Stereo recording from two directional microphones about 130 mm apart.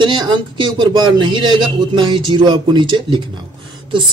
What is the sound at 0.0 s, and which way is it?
Speech, 35° right (ahead or behind).